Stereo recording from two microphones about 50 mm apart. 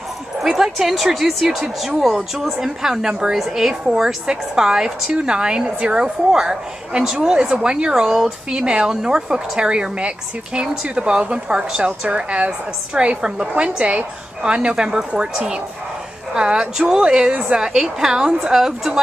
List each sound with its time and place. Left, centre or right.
0.4 s a woman's voice: centre
17.3 s a woman's voice: right
17.6 s speech: centre